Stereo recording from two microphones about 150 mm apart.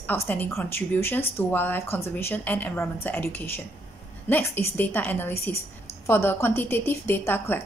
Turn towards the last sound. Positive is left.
turn(degrees=15)  # may be behind; listen again after turning